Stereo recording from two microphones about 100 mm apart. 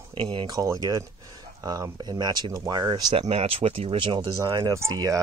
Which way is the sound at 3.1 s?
75° right (ahead or behind).